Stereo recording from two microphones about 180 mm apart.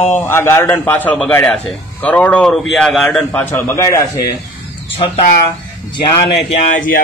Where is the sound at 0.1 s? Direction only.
10° left (ahead or behind).